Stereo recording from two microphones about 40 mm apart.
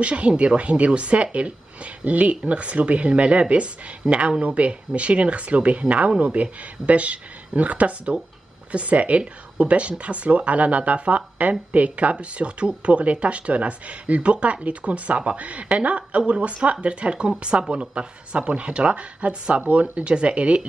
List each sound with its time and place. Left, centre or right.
0.0 s speech: right